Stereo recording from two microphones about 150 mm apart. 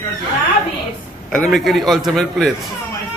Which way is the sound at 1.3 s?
Centre (ahead or behind).